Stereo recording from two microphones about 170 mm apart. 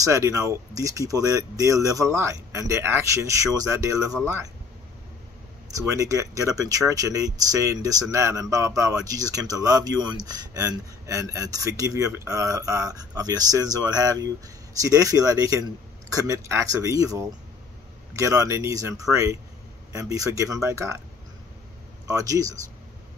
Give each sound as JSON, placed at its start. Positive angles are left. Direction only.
{"t": 0.0, "sound": "speech", "side_deg": -20}
{"t": 5.8, "sound": "speech", "side_deg": -20}
{"t": 22.0, "sound": "speech", "side_deg": -20}